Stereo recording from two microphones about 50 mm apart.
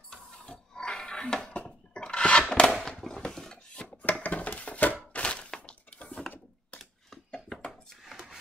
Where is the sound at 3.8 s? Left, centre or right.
Left.